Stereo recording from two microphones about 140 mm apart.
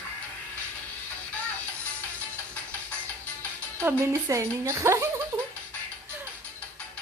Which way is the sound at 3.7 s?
20° right (ahead or behind).